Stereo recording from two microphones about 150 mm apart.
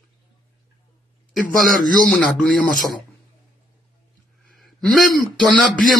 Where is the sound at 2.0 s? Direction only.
5° left (ahead or behind).